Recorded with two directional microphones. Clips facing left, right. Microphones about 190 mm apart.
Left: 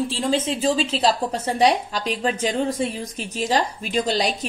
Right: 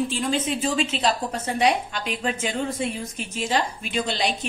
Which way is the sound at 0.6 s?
35° left (ahead or behind).